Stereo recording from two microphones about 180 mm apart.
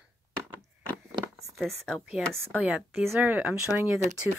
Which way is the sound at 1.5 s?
Centre (ahead or behind).